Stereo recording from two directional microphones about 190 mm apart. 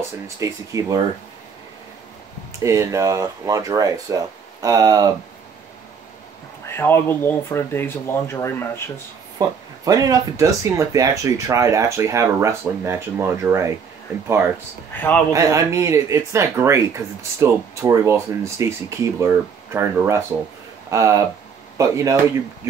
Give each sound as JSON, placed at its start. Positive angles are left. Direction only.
{"t": 0.4, "sound": "speech", "side_deg": -15}
{"t": 2.6, "sound": "speech", "side_deg": -15}
{"t": 6.7, "sound": "speech", "side_deg": 10}
{"t": 9.4, "sound": "speech", "side_deg": -20}
{"t": 15.0, "sound": "speech", "side_deg": 10}
{"t": 15.3, "sound": "speech", "side_deg": -15}